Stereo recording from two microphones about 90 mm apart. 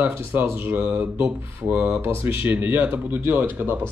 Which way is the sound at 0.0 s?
20° right (ahead or behind).